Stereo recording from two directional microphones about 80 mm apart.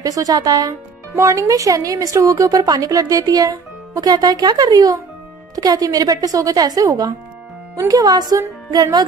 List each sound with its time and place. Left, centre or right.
0.0 s speech: right